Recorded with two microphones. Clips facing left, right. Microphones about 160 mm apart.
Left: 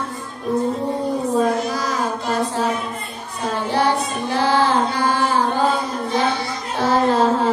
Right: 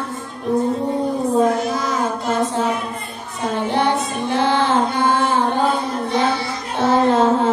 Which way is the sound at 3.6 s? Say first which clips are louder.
Even; 20° right (ahead or behind).